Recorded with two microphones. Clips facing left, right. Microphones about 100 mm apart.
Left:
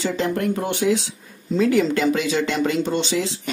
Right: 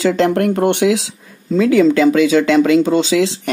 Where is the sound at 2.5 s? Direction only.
90° right.